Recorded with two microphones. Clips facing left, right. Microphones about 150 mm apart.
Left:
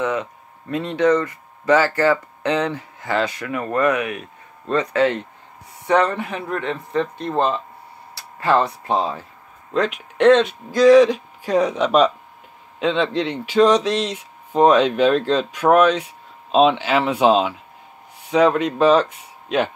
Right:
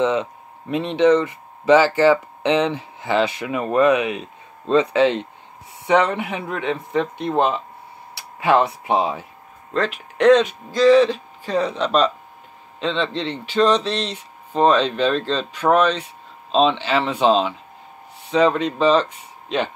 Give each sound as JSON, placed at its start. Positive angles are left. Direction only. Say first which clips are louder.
{"t": 0.0, "sound": "speech", "louder": "right 3 dB", "side_deg": -20}
{"t": 9.8, "sound": "speech", "louder": "left 2 dB", "side_deg": 0}
{"t": 10.7, "sound": "speech", "louder": "left 2 dB", "side_deg": 10}